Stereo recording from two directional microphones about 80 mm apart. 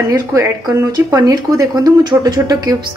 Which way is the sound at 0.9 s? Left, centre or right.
Right.